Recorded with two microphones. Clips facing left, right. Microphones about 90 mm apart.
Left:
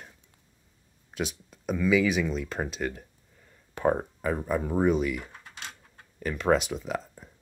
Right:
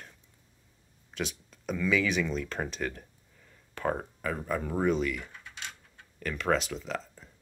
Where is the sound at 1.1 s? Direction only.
15° left (ahead or behind).